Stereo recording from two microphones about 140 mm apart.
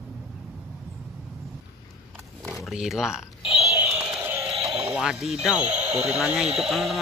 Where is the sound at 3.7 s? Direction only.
15° right (ahead or behind).